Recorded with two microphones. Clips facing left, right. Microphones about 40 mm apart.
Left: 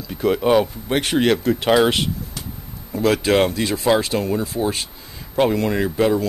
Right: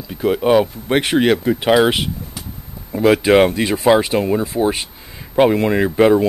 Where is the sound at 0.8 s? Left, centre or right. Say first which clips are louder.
Right 3 dB; centre.